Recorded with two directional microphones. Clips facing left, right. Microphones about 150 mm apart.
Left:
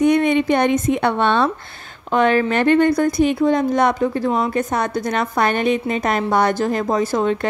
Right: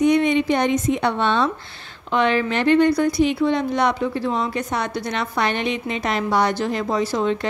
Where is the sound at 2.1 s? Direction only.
45° left (ahead or behind).